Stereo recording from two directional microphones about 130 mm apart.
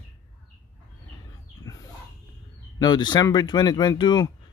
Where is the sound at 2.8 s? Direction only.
30° left (ahead or behind).